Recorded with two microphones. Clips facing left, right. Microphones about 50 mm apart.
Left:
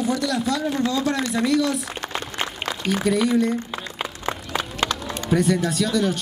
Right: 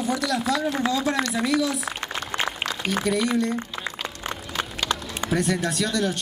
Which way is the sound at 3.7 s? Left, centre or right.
Left.